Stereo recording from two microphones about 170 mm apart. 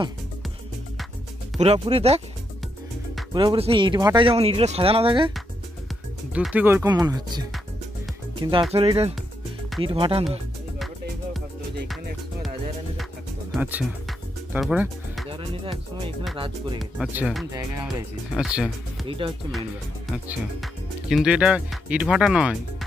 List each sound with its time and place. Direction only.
1.6 s speech: 35° right (ahead or behind)
3.3 s speech: 30° right (ahead or behind)
6.3 s speech: 10° right (ahead or behind)
6.9 s speech: 25° right (ahead or behind)
13.6 s music: 10° right (ahead or behind)
15.3 s speech: 30° right (ahead or behind)
17.0 s speech: 5° right (ahead or behind)
19.0 s speech: 30° right (ahead or behind)
20.1 s speech: centre (ahead or behind)